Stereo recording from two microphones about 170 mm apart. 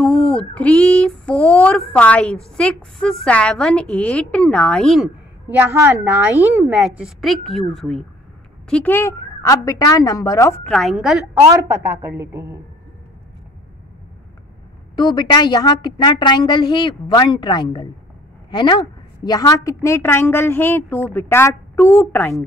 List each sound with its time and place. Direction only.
0.3 s a woman's voice: 5° left (ahead or behind)
5.5 s a woman's voice: 10° right (ahead or behind); by 10.6 s 20° left (ahead or behind)
10.6 s a woman's voice: 5° left (ahead or behind)
11.6 s a woman's voice: 15° right (ahead or behind)
15.0 s a woman's voice: 25° left (ahead or behind); by 22.5 s 10° left (ahead or behind)